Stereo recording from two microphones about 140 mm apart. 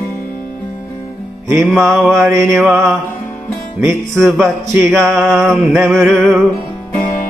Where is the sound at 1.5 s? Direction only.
10° right (ahead or behind).